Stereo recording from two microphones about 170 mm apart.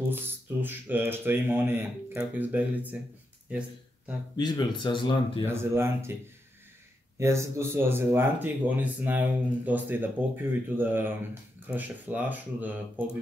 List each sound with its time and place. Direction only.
0.1 s speech: 10° right (ahead or behind)
4.4 s speech: 25° left (ahead or behind)
5.5 s speech: 15° right (ahead or behind)
7.2 s speech: 15° right (ahead or behind)